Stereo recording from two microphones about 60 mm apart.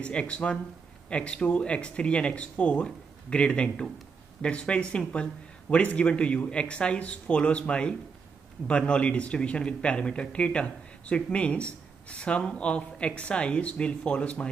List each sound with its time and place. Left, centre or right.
0.0 s speech: centre